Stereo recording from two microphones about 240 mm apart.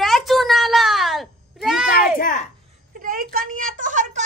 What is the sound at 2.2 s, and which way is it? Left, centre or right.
Speech, left.